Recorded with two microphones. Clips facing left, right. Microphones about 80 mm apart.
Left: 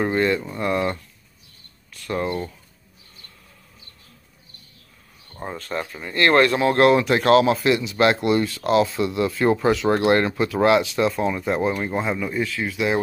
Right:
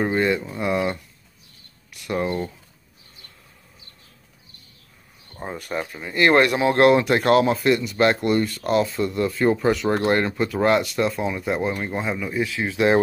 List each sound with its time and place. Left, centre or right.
0.0 s speech: centre
5.3 s speech: centre
7.4 s speech: centre
12.4 s speech: right